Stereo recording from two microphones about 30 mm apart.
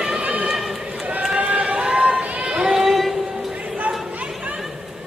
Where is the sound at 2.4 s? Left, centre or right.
Right.